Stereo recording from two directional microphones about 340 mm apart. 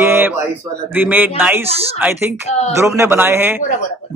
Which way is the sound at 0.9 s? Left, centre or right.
Centre.